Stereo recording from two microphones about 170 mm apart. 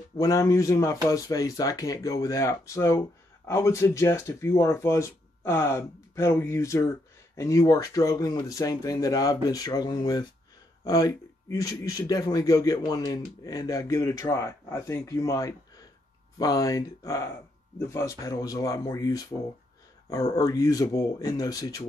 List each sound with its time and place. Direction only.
0.2 s speech: 20° left (ahead or behind)